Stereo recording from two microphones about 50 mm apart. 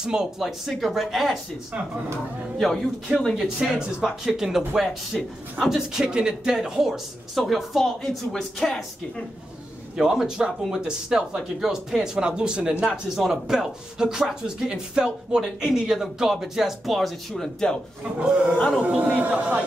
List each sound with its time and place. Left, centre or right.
0.0 s speech: centre
2.6 s a man's voice: centre
3.3 s speech: centre
9.9 s speech: centre
17.3 s a man's voice: centre
18.2 s a man's voice: centre